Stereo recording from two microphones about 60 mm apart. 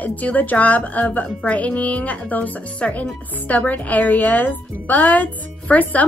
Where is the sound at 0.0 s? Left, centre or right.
Left.